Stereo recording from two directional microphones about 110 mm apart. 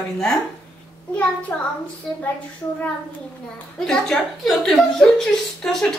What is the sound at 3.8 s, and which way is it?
A woman's voice, 5° left (ahead or behind).